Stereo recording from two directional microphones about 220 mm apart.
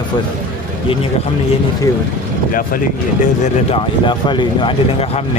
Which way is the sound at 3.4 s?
25° left (ahead or behind).